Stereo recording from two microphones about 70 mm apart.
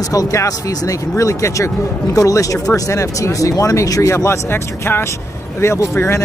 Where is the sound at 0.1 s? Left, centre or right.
Left.